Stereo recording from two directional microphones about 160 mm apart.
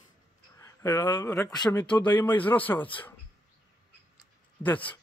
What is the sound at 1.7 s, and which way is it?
Speech, 10° left (ahead or behind).